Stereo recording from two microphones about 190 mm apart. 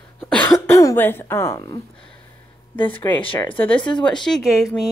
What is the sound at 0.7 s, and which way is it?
Speech, 15° left (ahead or behind).